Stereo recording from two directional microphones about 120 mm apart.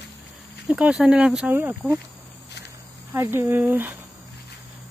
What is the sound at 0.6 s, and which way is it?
Speech, 10° right (ahead or behind).